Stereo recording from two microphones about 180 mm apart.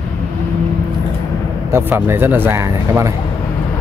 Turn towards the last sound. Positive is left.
turn(degrees=-15)  # may be behind; listen again after turning